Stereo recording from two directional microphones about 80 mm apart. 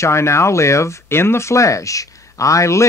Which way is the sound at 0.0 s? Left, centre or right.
Left.